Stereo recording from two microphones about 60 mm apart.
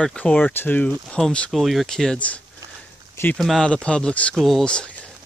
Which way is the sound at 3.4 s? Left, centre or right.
Centre.